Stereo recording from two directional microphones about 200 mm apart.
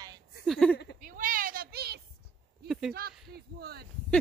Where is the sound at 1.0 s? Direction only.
45° right (ahead or behind).